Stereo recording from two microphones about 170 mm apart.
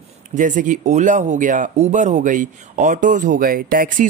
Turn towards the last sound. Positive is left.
turn(degrees=-60)  # may be behind; listen again after turning